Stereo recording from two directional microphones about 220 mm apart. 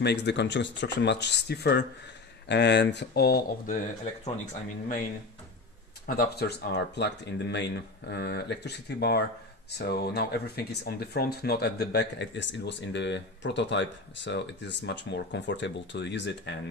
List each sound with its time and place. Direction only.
0.0 s speech: 50° left (ahead or behind); by 4.3 s 35° left (ahead or behind)
6.0 s speech: 45° left (ahead or behind)